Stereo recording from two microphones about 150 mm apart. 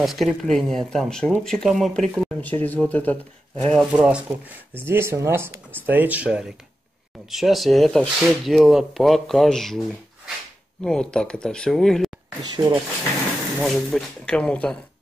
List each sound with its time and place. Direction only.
0.0 s speech: centre (ahead or behind)
3.9 s speech: 5° right (ahead or behind)
12.6 s speech: 25° right (ahead or behind)
13.6 s speech: centre (ahead or behind)